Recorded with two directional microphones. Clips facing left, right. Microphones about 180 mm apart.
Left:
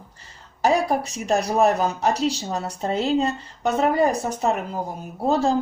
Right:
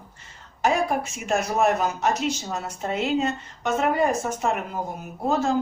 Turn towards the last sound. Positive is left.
turn(degrees=35)  # may be behind; listen again after turning